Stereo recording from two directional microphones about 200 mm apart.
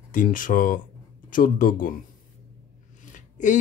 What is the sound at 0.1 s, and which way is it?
Speech, 40° left (ahead or behind).